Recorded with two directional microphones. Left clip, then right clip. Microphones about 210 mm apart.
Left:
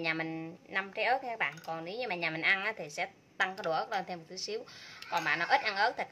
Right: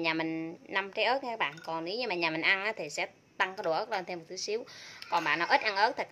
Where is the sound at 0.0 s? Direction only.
15° right (ahead or behind).